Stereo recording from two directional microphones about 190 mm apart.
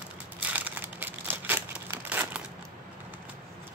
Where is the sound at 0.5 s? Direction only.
10° right (ahead or behind).